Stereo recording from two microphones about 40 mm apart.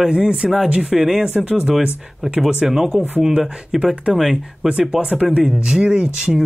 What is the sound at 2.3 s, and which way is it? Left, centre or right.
Speech, centre.